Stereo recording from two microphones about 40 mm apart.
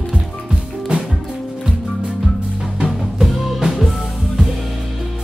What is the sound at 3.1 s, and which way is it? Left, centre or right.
Music, centre.